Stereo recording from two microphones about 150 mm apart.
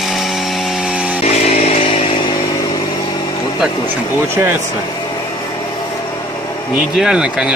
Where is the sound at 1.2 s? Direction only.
45° left (ahead or behind).